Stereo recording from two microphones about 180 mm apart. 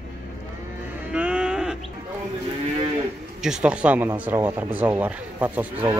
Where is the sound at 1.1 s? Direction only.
5° right (ahead or behind).